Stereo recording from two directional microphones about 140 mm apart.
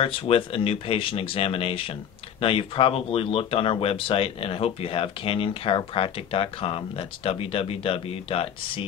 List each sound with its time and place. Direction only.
0.0 s speech: 40° left (ahead or behind)